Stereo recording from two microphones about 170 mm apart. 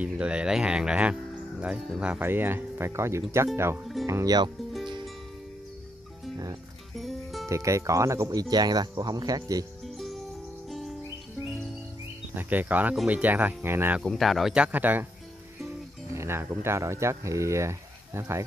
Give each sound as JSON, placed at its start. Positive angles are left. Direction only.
{"t": 0.0, "sound": "speech", "side_deg": -5}
{"t": 7.0, "sound": "music", "side_deg": 0}
{"t": 7.4, "sound": "speech", "side_deg": -20}
{"t": 9.8, "sound": "music", "side_deg": 0}
{"t": 12.4, "sound": "speech", "side_deg": -10}
{"t": 14.0, "sound": "speech", "side_deg": 0}
{"t": 16.1, "sound": "speech", "side_deg": -15}